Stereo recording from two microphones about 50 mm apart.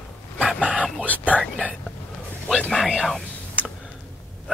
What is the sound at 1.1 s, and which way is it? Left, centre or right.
Speech, left.